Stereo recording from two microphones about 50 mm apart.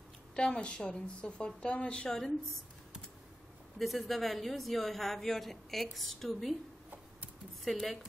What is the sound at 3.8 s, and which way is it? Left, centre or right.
Speech, centre.